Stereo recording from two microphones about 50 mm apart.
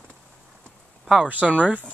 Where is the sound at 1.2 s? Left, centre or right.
Right.